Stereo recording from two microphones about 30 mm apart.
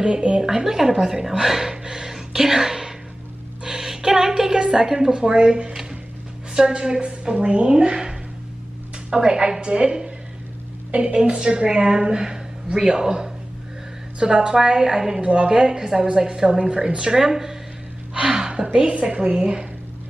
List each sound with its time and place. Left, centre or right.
0.0 s speech: right
0.4 s a woman's voice: right
1.7 s a sound: right
2.1 s whispering: centre
3.6 s a sound: centre
4.8 s speech: centre
5.1 s a woman's voice: right
10.9 s a woman's voice: right
11.1 s a woman's voice: right
14.3 s a woman's voice: right
15.2 s a woman's voice: right; by 17.6 s centre
18.2 s a sound: right
19.0 s a woman's voice: right